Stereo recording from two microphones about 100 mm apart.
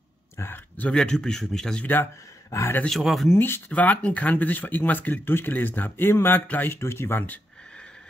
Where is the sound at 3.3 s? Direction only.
20° left (ahead or behind).